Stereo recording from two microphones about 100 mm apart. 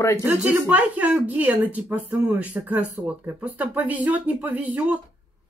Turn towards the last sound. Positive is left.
turn(degrees=-15)  # may be behind; listen again after turning